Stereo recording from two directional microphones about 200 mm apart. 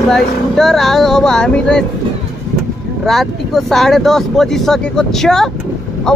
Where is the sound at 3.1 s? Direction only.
Centre (ahead or behind).